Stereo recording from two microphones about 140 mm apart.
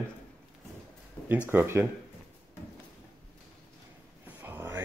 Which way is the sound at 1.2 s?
10° left (ahead or behind).